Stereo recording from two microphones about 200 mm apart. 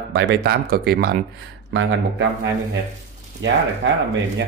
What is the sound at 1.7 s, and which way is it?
Speech, 70° right (ahead or behind).